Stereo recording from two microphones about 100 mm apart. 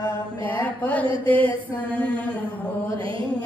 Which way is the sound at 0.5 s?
15° left (ahead or behind).